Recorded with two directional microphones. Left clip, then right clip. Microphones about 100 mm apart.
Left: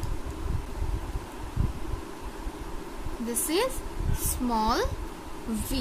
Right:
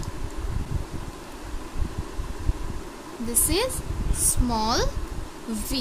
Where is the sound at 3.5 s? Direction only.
15° right (ahead or behind).